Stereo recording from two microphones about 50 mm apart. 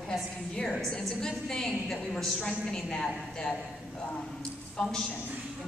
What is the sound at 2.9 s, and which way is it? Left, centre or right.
Speech, centre.